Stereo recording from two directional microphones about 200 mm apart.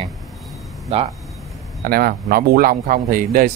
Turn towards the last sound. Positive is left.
turn(degrees=-45)  # may be behind; listen again after turning